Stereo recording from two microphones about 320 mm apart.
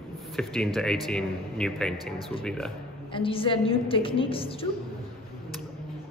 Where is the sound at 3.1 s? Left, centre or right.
Centre.